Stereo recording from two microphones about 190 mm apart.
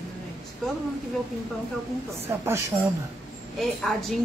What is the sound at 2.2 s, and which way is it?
Speech, 10° right (ahead or behind).